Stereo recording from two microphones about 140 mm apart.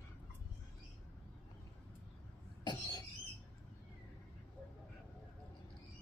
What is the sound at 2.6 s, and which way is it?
Cough, 30° left (ahead or behind).